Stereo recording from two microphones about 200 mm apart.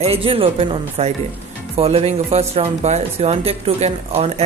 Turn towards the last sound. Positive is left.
turn(degrees=-30)  # may be behind; listen again after turning